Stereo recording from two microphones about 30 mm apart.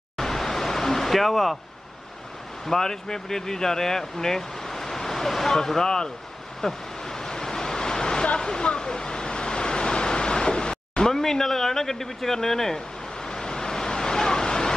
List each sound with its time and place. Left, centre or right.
0.2 s a sound: centre
1.1 s speech: centre
2.6 s speech: centre
6.6 s waves: centre
8.4 s waterfall: left
8.8 s waves: left
11.1 s speech: centre
12.7 s vehicle: left